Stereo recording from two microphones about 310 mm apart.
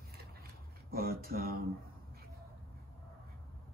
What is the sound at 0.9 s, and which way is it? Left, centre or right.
Speech, right.